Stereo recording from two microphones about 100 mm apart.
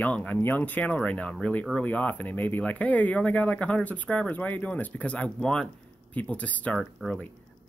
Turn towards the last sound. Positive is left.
turn(degrees=5)  # may be behind; listen again after turning